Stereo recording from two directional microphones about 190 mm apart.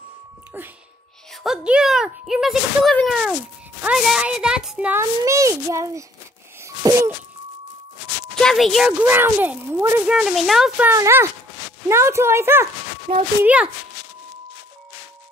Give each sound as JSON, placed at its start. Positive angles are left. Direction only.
{"t": 1.3, "sound": "a child's voice", "side_deg": 0}
{"t": 6.8, "sound": "wail", "side_deg": -15}
{"t": 8.4, "sound": "speech", "side_deg": 0}
{"t": 10.9, "sound": "a child's voice", "side_deg": -15}